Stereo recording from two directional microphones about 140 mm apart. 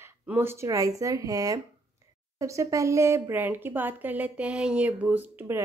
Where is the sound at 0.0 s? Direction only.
15° right (ahead or behind).